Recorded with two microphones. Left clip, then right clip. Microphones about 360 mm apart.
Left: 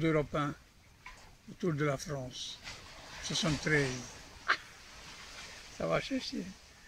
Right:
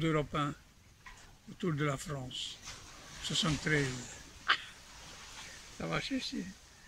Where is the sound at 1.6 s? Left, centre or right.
Centre.